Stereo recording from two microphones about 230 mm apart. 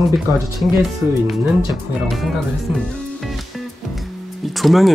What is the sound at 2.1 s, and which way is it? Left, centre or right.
Speech, centre.